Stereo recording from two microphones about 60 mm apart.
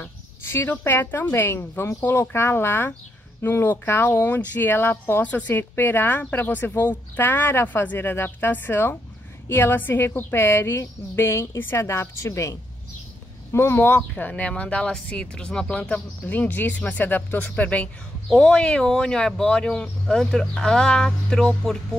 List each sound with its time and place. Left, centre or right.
0.0 s a woman's voice: left
5.2 s speech: left
5.6 s a woman's voice: left; by 16.3 s centre
16.3 s speech: left; by 21.7 s centre